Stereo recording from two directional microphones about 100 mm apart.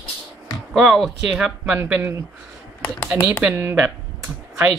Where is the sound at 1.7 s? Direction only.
20° right (ahead or behind).